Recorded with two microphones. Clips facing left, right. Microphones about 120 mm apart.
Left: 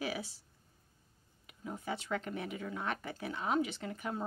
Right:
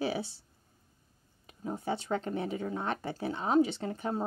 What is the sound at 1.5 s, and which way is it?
A woman's voice, 35° right (ahead or behind).